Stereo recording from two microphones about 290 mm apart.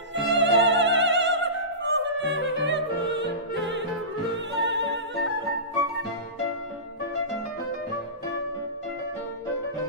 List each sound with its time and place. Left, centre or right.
0.1 s opera: right
1.9 s music: right